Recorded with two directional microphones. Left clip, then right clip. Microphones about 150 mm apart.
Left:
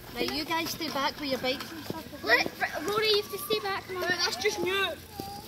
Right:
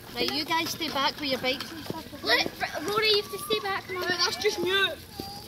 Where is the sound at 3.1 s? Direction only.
15° left (ahead or behind).